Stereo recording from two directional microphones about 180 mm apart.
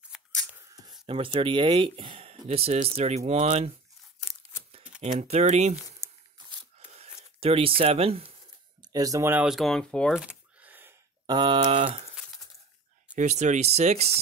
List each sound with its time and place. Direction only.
0.1 s a sound: 5° left (ahead or behind)
1.0 s speech: 30° right (ahead or behind)
5.0 s speech: 35° right (ahead or behind)
6.0 s a sound: 15° right (ahead or behind)
7.3 s speech: 30° right (ahead or behind)
8.8 s speech: 20° right (ahead or behind)
11.2 s speech: 25° right (ahead or behind)
13.1 s speech: 40° right (ahead or behind)